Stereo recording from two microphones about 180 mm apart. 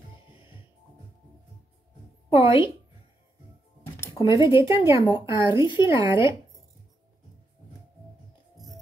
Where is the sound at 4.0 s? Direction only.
25° left (ahead or behind).